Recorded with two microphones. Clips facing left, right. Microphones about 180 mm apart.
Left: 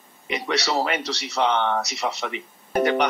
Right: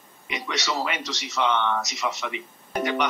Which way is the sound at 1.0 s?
35° left (ahead or behind).